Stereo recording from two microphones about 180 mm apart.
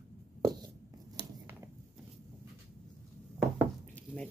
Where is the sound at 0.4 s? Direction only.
20° right (ahead or behind).